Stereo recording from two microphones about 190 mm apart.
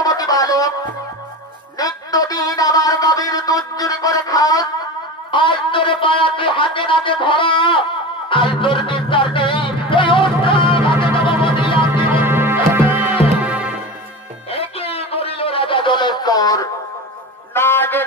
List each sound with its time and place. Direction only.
0.0 s music: 20° left (ahead or behind)
1.8 s a sound: 20° left (ahead or behind)
8.3 s music: 25° left (ahead or behind)
11.9 s music: 10° right (ahead or behind)
14.5 s a sound: 30° left (ahead or behind)
17.6 s music: 10° left (ahead or behind)